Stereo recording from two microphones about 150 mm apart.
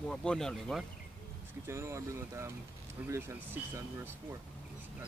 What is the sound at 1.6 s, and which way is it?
Speech, 20° right (ahead or behind).